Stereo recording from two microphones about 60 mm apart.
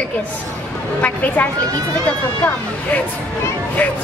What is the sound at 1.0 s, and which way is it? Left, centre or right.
Speech, left.